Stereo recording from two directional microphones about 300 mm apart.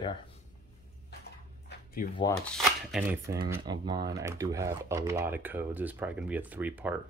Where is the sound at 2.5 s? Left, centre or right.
Centre.